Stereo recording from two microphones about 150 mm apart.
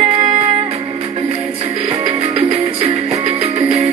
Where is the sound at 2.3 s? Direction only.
45° right (ahead or behind).